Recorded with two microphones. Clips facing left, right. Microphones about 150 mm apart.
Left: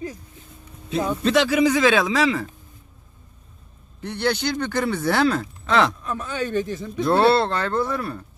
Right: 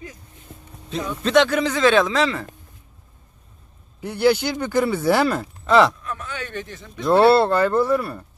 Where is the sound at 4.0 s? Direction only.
5° right (ahead or behind).